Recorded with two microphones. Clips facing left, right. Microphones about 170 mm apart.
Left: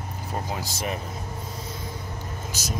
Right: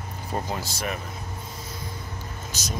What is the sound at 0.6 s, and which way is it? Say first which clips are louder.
Speech: left 1 dB; 20° left (ahead or behind).